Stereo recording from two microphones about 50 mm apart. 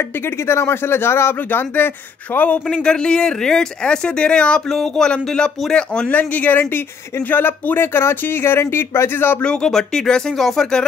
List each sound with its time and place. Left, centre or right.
0.5 s speech: left
1.5 s speech: left
2.3 s speech: left
2.7 s speech: centre
4.6 s speech: centre
6.0 s speech: left
9.4 s speech: centre